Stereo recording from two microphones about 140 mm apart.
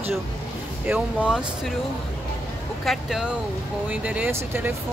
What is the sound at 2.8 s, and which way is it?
Speech, centre (ahead or behind).